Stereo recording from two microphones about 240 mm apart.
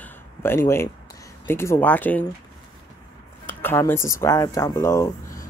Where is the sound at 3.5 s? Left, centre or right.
Centre.